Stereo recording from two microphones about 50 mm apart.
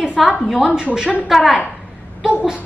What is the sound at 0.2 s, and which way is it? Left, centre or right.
A woman's voice, centre.